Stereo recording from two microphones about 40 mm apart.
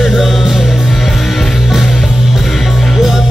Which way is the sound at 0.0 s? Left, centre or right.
Centre.